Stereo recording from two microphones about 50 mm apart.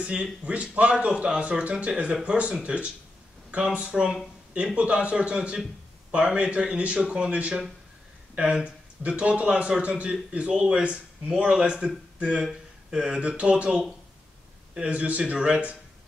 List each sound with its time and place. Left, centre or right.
0.0 s speech: right
3.9 s speech: centre
4.7 s speech: right
8.4 s speech: right